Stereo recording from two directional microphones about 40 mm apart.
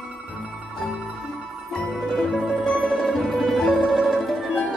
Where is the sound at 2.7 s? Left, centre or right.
Left.